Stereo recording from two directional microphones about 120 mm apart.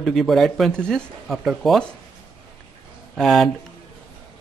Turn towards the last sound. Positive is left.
turn(degrees=0)  # may be behind; listen again after turning